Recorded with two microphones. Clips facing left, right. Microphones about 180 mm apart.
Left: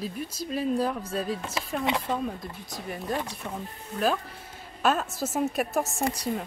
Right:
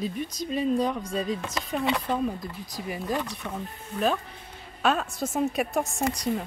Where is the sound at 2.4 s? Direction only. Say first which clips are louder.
Right 1 dB; 25° left (ahead or behind).